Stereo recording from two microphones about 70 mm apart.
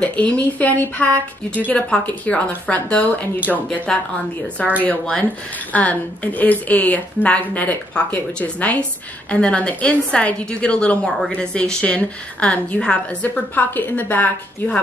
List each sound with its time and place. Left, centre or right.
0.0 s a woman's voice: centre
3.3 s speech: right
3.9 s a woman's voice: centre
4.7 s a woman's voice: left
11.1 s a woman's voice: centre
11.3 s a woman's voice: centre